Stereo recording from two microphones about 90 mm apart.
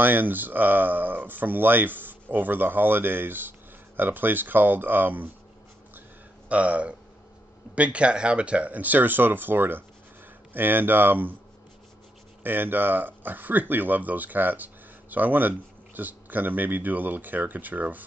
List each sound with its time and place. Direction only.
0.0 s speech: 20° right (ahead or behind)
6.5 s speech: 15° right (ahead or behind)
12.4 s speech: 20° right (ahead or behind)